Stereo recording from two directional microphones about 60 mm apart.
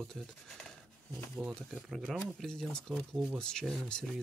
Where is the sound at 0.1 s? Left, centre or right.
Centre.